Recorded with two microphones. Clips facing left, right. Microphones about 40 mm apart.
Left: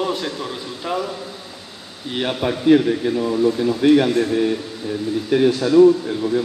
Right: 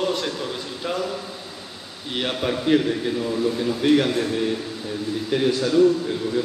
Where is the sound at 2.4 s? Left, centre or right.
Centre.